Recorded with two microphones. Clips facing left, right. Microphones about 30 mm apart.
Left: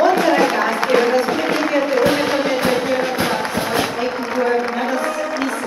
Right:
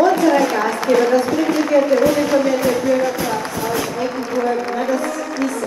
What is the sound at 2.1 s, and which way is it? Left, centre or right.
Music, left.